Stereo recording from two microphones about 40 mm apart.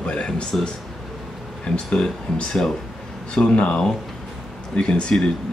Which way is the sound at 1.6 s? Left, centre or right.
Left.